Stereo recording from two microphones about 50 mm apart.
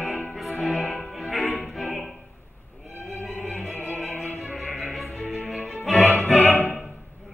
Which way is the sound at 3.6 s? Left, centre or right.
Left.